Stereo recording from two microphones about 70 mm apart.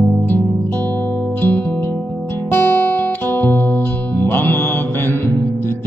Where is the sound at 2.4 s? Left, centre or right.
Left.